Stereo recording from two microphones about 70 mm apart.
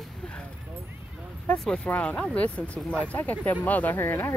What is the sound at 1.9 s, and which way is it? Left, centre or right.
Speech, centre.